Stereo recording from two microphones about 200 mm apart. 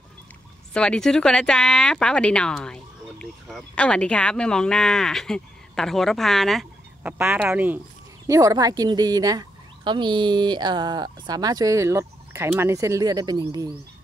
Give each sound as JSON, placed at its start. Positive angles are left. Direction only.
{"t": 0.7, "sound": "speech", "side_deg": 5}